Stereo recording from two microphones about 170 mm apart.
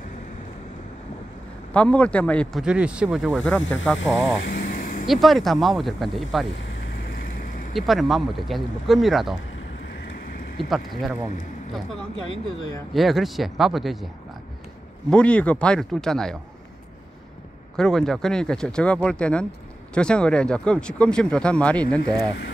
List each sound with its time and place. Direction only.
1.7 s speech: 5° left (ahead or behind)
2.6 s speech: 5° right (ahead or behind)
3.4 s speech: 10° left (ahead or behind)
4.5 s vehicle: 60° left (ahead or behind)
5.0 s speech: centre (ahead or behind)
7.7 s speech: centre (ahead or behind)
10.6 s speech: centre (ahead or behind)
12.9 s speech: centre (ahead or behind)
15.0 s speech: 5° left (ahead or behind)
17.7 s speech: 5° left (ahead or behind)